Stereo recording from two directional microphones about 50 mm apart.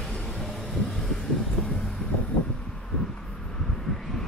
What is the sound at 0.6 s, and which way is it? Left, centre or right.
Vehicle, centre.